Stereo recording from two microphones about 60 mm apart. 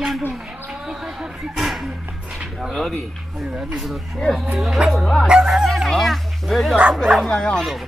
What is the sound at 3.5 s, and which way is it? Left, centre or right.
Speech, centre.